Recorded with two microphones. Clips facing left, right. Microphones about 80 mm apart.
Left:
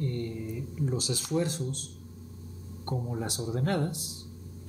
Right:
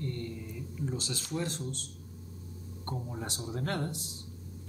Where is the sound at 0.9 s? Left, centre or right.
Centre.